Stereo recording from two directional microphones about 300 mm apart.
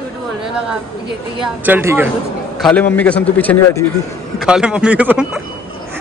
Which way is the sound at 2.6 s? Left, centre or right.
Centre.